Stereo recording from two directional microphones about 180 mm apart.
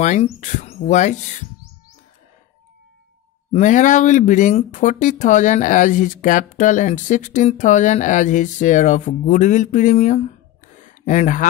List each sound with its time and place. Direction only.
0.0 s speech: 40° left (ahead or behind)
3.5 s speech: 45° left (ahead or behind)
10.8 s a sound: 45° left (ahead or behind)